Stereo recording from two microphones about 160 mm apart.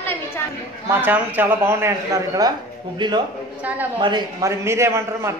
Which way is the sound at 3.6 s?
10° right (ahead or behind).